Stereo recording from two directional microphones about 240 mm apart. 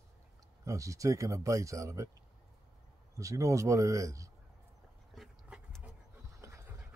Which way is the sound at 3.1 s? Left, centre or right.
Centre.